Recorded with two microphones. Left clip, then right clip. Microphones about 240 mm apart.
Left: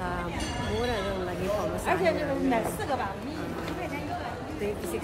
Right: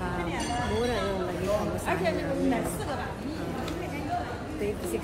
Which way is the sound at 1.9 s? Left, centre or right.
Left.